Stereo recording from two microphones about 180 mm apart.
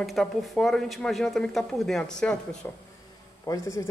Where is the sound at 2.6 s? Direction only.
15° left (ahead or behind).